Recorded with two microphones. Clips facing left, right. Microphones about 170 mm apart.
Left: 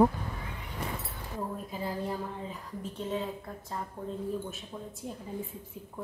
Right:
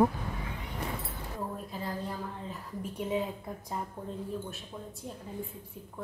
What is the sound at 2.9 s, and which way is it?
Speech, 15° right (ahead or behind).